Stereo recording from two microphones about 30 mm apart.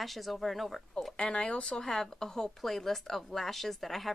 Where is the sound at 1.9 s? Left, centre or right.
Left.